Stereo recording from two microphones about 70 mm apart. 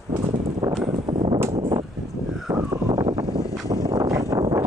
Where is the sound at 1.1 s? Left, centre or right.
Right.